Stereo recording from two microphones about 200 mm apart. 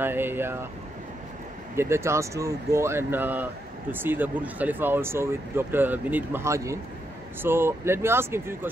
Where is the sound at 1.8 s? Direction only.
15° right (ahead or behind).